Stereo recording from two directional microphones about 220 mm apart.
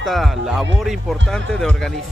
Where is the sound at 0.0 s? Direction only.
Centre (ahead or behind).